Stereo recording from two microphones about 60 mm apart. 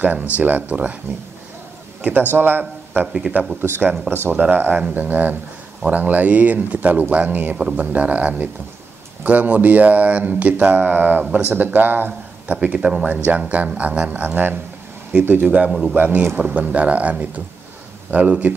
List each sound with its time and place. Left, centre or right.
0.0 s speech: right
2.0 s a sound: right
2.3 s speech: right
3.1 s speech: centre
3.6 s speech: right
15.4 s speech: right